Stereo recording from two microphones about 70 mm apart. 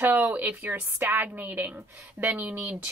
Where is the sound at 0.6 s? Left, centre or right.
Right.